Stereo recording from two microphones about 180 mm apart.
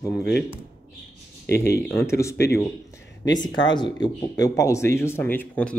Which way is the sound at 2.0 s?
15° left (ahead or behind).